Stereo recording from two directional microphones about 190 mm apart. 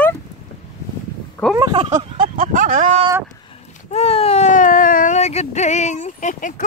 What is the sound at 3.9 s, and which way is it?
Baby cry, 35° left (ahead or behind).